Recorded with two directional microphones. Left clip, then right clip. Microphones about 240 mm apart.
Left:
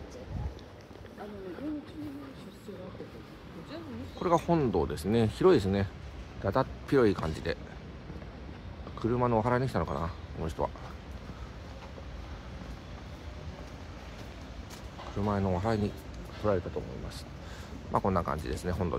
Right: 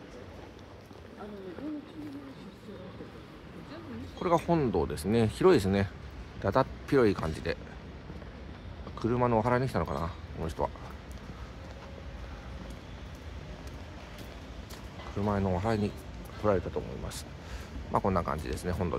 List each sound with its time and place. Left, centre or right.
4.2 s speech: centre
8.9 s speech: centre
15.2 s speech: centre
16.4 s speech: centre
17.9 s speech: centre